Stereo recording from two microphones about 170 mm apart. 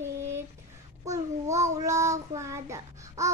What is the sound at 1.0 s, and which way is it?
Child singing, 20° right (ahead or behind).